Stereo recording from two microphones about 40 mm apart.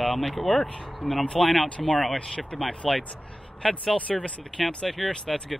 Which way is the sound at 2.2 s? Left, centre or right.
Centre.